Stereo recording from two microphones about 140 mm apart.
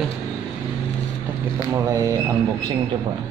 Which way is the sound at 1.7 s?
25° right (ahead or behind).